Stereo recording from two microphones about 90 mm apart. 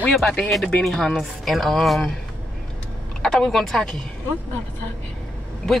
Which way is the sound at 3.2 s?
5° left (ahead or behind).